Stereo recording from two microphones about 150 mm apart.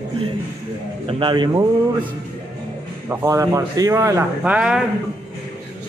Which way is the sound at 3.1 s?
20° right (ahead or behind).